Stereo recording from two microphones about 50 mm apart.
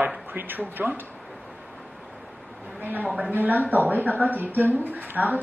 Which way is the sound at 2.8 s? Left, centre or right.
Right.